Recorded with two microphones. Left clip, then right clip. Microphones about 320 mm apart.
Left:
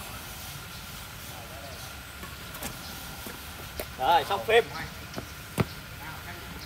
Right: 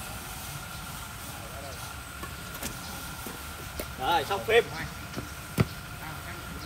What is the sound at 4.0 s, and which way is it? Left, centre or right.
Speech, left.